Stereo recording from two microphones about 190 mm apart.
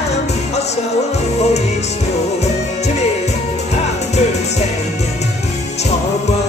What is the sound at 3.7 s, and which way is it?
Music, 35° left (ahead or behind).